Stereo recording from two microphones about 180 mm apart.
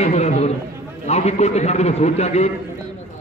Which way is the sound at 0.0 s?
40° left (ahead or behind).